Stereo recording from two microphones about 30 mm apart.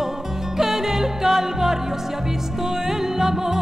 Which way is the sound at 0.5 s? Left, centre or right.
Centre.